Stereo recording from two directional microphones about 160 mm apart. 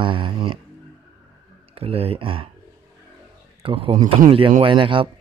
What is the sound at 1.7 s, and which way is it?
Speech, 35° right (ahead or behind).